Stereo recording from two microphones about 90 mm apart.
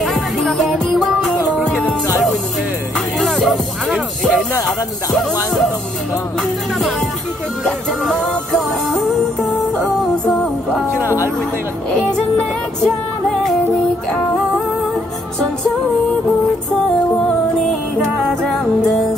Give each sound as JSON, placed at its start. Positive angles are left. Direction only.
{"t": 0.0, "sound": "music", "side_deg": 0}
{"t": 1.6, "sound": "music", "side_deg": 10}
{"t": 3.2, "sound": "music", "side_deg": 0}
{"t": 5.1, "sound": "speech", "side_deg": 0}
{"t": 7.6, "sound": "music", "side_deg": 5}
{"t": 11.0, "sound": "music", "side_deg": 35}
{"t": 11.9, "sound": "music", "side_deg": 5}
{"t": 18.4, "sound": "music", "side_deg": 5}